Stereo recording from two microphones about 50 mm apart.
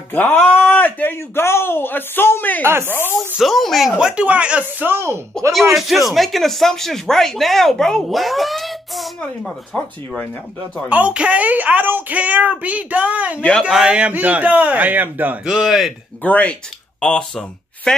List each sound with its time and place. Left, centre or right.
0.1 s speech: left
1.1 s speech: left
2.6 s speech: right
2.9 s speech: left
3.3 s speech: centre
4.0 s speech: right
4.6 s speech: right
5.5 s speech: centre
10.9 s speech: right
13.7 s a man's voice: centre
14.1 s speech: right
15.4 s speech: centre
16.2 s speech: left
17.0 s speech: centre